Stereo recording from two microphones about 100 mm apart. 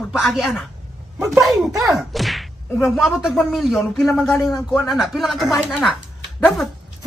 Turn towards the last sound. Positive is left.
turn(degrees=5)  # may be behind; listen again after turning